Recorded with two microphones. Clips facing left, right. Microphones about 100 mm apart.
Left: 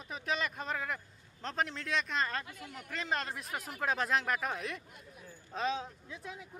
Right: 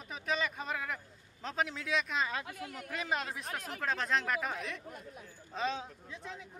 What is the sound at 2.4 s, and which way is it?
Speech, 55° right (ahead or behind).